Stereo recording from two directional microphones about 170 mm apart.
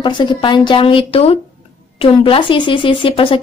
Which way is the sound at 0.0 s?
25° left (ahead or behind).